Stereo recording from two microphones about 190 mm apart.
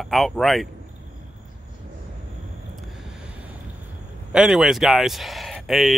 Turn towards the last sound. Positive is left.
turn(degrees=0)  # may be behind; listen again after turning